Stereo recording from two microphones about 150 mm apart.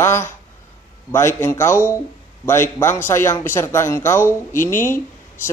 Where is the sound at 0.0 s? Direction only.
15° left (ahead or behind).